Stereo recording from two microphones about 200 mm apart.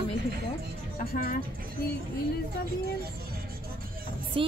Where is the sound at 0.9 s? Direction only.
45° left (ahead or behind).